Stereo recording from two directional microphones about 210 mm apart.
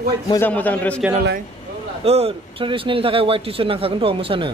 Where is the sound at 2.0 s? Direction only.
30° right (ahead or behind).